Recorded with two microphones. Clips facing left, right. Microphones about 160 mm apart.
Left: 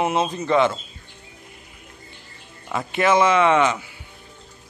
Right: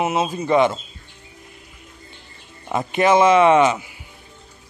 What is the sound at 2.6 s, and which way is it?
Speech, 20° right (ahead or behind).